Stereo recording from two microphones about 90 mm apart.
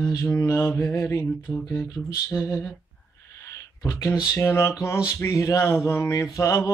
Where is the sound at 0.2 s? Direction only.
25° left (ahead or behind).